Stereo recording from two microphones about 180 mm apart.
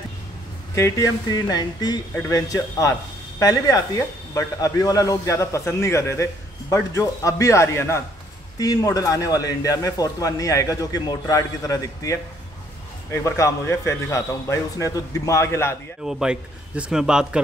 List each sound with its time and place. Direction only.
0.7 s a man's voice: 15° left (ahead or behind)
16.1 s a man's voice: 5° right (ahead or behind)